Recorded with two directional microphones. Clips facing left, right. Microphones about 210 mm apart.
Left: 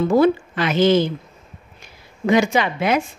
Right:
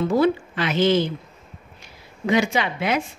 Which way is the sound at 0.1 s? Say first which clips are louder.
Left 4 dB; 50° left (ahead or behind).